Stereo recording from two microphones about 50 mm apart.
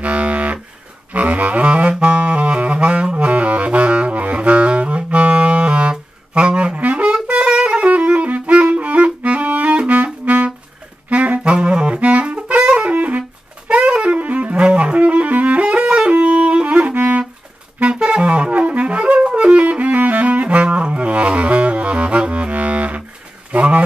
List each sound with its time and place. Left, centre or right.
0.0 s a sound: right
1.1 s saxophone: right
7.2 s music: right
11.1 s saxophone: right
12.9 s saxophone: right
16.9 s music: right
17.7 s music: right
23.5 s a sound: right